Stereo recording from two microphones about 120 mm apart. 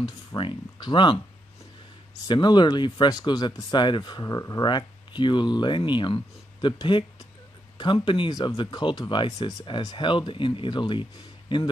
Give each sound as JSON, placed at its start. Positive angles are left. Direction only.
{"t": 0.4, "sound": "speech", "side_deg": 40}
{"t": 2.2, "sound": "speech", "side_deg": 35}